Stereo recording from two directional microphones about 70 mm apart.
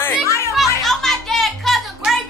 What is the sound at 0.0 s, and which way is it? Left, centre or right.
Children playing, left.